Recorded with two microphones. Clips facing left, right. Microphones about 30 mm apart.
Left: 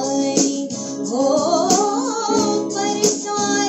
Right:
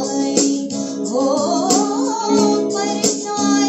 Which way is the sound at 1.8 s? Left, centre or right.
Centre.